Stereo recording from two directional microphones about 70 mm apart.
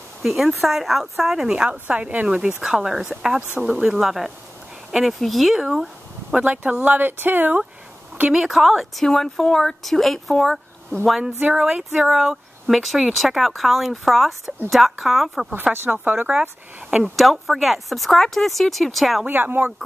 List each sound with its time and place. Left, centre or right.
0.2 s a woman's voice: centre
3.5 s speech: centre
3.8 s a woman's voice: centre
6.3 s speech: right
8.3 s a woman's voice: centre
11.3 s a woman's voice: centre
16.9 s speech: centre
19.2 s speech: right